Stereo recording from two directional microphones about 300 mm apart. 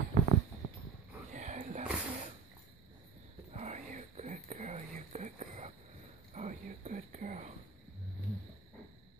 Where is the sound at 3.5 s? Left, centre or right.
Right.